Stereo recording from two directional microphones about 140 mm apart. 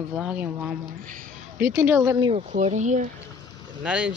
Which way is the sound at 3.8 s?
10° right (ahead or behind).